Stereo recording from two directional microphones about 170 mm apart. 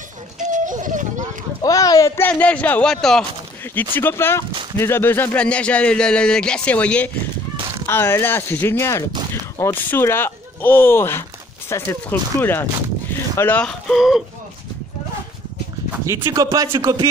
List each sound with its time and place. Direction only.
0.4 s children playing: 45° right (ahead or behind)
1.6 s speech: 20° left (ahead or behind); by 3.3 s 5° left (ahead or behind)
3.9 s speech: 15° left (ahead or behind)
7.5 s fowl: 35° right (ahead or behind)
7.8 s speech: 15° left (ahead or behind); by 14.2 s centre (ahead or behind)
16.1 s speech: 20° right (ahead or behind)